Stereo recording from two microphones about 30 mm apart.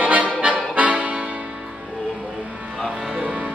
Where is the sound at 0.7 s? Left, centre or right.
Right.